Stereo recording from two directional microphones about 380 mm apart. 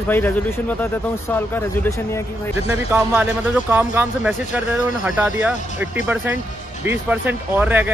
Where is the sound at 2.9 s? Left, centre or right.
Centre.